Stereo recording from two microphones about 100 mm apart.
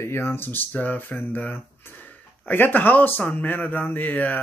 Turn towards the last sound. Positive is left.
turn(degrees=15)  # may be behind; listen again after turning